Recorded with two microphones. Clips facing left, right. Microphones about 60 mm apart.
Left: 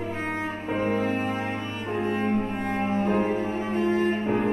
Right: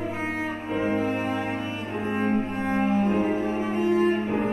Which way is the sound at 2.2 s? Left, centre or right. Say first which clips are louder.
Right 1 dB; centre.